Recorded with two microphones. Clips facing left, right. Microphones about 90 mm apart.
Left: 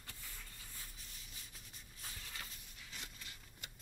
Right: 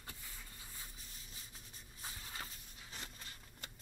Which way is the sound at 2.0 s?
30° right (ahead or behind).